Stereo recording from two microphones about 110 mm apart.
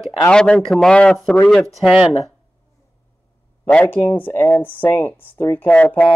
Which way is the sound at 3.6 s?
15° left (ahead or behind).